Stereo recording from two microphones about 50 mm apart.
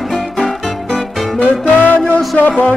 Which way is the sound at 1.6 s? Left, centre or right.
Left.